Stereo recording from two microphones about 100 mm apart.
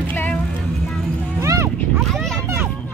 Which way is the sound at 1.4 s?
30° right (ahead or behind).